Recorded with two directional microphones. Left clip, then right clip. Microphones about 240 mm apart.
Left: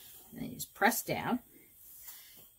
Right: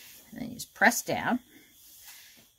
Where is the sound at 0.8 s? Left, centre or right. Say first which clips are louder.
Right 6 dB; right.